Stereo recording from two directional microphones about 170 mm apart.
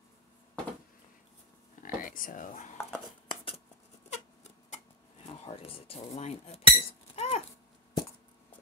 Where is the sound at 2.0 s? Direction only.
55° left (ahead or behind).